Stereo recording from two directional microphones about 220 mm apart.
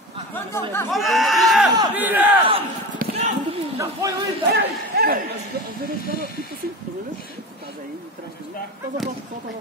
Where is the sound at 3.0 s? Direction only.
40° right (ahead or behind).